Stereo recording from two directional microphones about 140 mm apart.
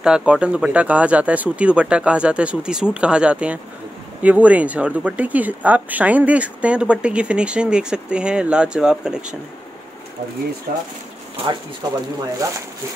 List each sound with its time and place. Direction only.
0.0 s speech: 5° right (ahead or behind)
11.8 s speech: 30° right (ahead or behind)